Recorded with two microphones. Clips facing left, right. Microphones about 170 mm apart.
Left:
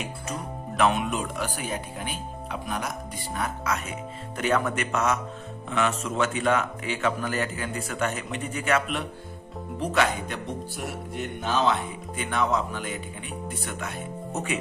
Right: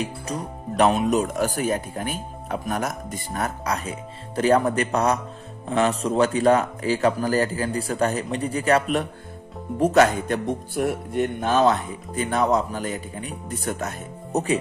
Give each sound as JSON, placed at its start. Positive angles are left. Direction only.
{"t": 0.0, "sound": "music", "side_deg": -35}
{"t": 4.4, "sound": "speech", "side_deg": -35}
{"t": 9.8, "sound": "music", "side_deg": -45}